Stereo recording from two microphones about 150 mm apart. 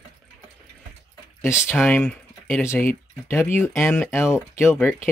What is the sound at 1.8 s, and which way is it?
Speech, 10° left (ahead or behind).